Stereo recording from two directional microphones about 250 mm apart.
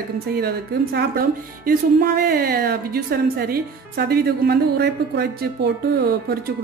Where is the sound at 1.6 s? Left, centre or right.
Right.